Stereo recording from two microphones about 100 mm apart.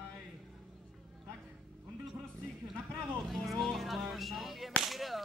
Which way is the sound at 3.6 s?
Centre (ahead or behind).